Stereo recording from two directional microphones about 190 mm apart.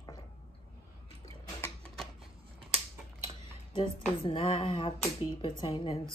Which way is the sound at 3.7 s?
25° left (ahead or behind).